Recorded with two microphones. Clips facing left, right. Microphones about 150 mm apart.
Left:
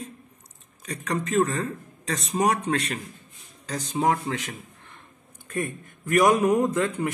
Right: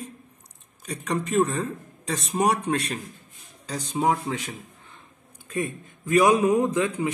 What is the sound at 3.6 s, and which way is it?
Speech, 10° right (ahead or behind).